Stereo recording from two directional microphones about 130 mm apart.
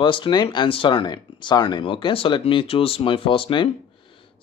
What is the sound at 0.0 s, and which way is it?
Speech, 40° left (ahead or behind).